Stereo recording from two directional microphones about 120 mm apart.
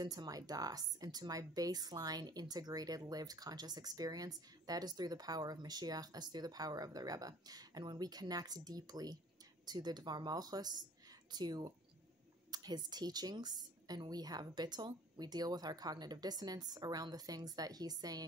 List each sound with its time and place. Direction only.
0.0 s a woman's voice: 35° right (ahead or behind)